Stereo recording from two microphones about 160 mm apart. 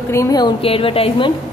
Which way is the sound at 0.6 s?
35° left (ahead or behind).